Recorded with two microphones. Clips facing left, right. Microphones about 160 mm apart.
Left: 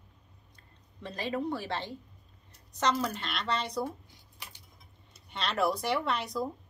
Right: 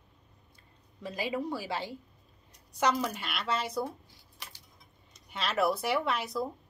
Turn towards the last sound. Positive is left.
turn(degrees=-5)  # may be behind; listen again after turning